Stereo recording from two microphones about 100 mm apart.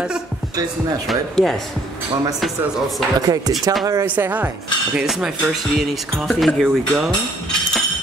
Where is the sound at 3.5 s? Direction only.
40° right (ahead or behind).